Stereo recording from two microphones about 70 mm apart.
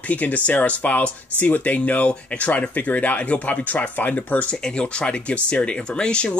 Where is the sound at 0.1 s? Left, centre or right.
Left.